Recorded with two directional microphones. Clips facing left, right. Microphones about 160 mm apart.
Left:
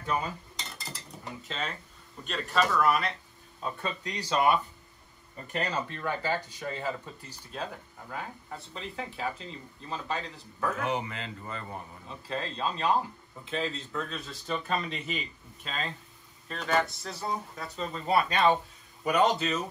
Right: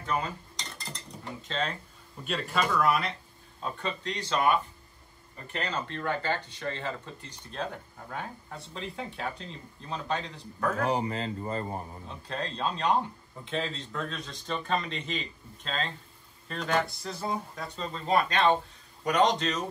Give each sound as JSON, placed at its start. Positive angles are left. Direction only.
{"t": 0.2, "sound": "dishes", "side_deg": 10}
{"t": 1.5, "sound": "speech", "side_deg": 5}
{"t": 10.8, "sound": "speech", "side_deg": -35}
{"t": 12.1, "sound": "speech", "side_deg": 0}